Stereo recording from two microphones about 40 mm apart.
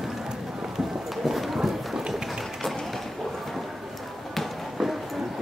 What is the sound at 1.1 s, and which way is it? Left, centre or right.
Clip-clop, centre.